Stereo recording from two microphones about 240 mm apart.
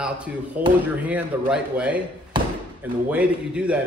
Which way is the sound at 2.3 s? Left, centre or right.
Centre.